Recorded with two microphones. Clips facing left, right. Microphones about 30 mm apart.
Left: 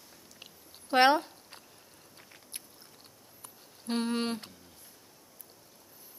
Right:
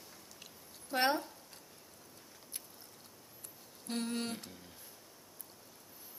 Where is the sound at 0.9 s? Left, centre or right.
Left.